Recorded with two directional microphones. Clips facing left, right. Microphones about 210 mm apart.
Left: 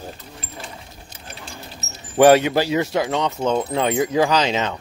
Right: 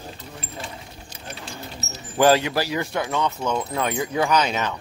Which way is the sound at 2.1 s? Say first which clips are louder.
Left 5 dB; 20° left (ahead or behind).